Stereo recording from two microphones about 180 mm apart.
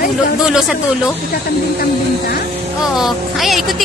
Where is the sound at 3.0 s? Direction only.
Centre (ahead or behind).